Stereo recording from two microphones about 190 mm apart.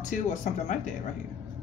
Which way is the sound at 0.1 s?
40° left (ahead or behind).